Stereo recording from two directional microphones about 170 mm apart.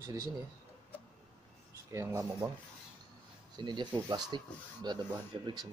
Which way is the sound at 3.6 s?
25° right (ahead or behind).